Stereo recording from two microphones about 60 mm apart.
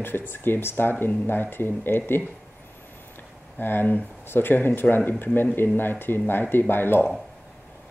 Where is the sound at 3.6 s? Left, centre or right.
Left.